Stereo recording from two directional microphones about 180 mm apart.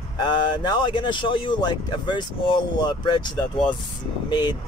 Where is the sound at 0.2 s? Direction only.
25° left (ahead or behind).